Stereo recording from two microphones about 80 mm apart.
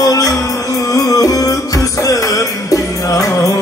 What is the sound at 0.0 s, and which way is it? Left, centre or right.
Music, left.